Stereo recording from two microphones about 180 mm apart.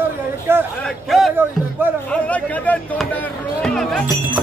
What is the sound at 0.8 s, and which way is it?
Speech, centre (ahead or behind).